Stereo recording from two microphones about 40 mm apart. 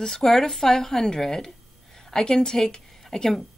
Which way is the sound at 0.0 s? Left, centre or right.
Centre.